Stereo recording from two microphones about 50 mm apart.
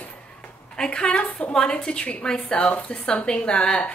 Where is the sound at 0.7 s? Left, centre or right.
Centre.